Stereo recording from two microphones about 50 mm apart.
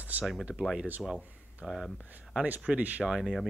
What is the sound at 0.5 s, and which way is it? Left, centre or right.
Speech, centre.